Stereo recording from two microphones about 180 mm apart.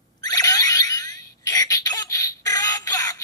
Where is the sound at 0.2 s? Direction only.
20° left (ahead or behind).